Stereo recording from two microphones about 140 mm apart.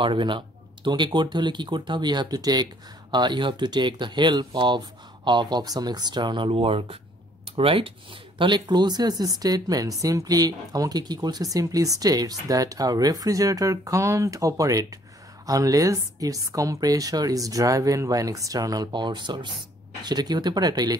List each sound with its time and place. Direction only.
0.0 s speech: 35° right (ahead or behind)